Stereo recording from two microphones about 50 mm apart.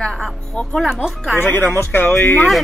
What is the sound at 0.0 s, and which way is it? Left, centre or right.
Speech, centre.